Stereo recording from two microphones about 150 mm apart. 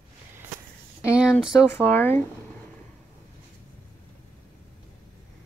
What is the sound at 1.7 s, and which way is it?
Speech, 15° left (ahead or behind).